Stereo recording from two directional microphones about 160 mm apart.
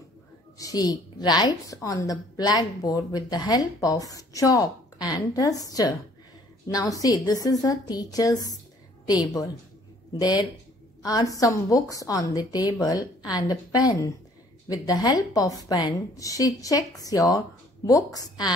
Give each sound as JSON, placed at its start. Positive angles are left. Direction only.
{"t": 0.6, "sound": "a woman's voice", "side_deg": 25}
{"t": 11.0, "sound": "a woman's voice", "side_deg": 20}